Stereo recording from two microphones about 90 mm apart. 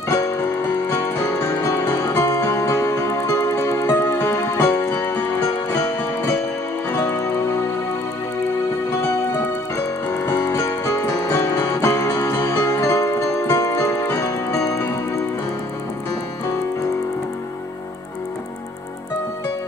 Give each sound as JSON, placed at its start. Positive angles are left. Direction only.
{"t": 0.1, "sound": "music", "side_deg": 35}
{"t": 4.9, "sound": "music", "side_deg": 25}
{"t": 5.4, "sound": "music", "side_deg": 35}
{"t": 9.8, "sound": "music", "side_deg": 30}